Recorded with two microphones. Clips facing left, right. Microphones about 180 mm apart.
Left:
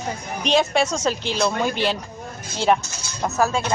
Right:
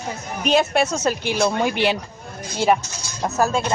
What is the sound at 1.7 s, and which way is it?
Speech, 60° right (ahead or behind).